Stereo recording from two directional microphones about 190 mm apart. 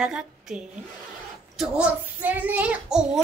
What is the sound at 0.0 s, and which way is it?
A woman's voice, 5° right (ahead or behind).